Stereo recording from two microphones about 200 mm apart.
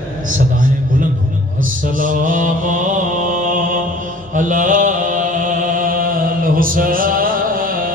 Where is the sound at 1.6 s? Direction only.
40° right (ahead or behind).